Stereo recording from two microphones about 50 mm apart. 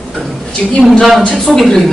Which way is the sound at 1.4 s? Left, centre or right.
Centre.